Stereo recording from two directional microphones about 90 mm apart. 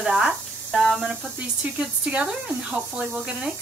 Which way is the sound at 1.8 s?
10° right (ahead or behind).